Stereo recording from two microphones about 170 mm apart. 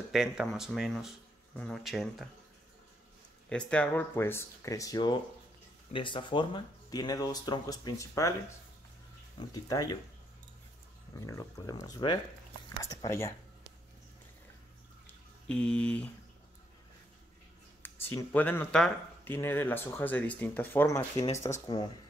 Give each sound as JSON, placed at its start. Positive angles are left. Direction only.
{"t": 0.1, "sound": "speech", "side_deg": 0}
{"t": 3.4, "sound": "speech", "side_deg": 5}
{"t": 9.4, "sound": "speech", "side_deg": 20}
{"t": 11.1, "sound": "speech", "side_deg": 20}
{"t": 15.0, "sound": "a sound", "side_deg": 5}
{"t": 17.8, "sound": "speech", "side_deg": 10}